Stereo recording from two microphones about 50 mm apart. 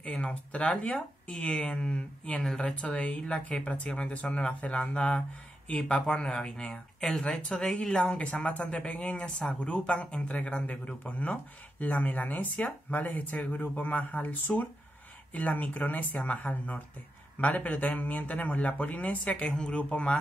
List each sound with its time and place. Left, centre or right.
0.0 s speech: left
15.3 s speech: left
19.5 s speech: centre
19.8 s speech: left